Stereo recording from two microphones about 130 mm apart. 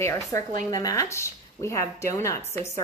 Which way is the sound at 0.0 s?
20° left (ahead or behind).